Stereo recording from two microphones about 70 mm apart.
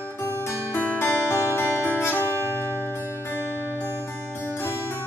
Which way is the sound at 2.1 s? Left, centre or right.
Right.